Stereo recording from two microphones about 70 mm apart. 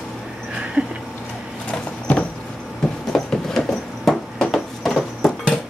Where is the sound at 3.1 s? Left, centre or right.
Centre.